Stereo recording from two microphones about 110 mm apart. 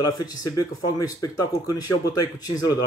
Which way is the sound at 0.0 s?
35° left (ahead or behind).